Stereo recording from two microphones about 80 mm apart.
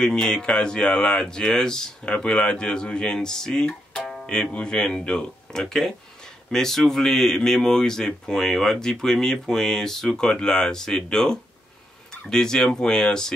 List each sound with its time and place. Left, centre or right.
0.0 s speech: centre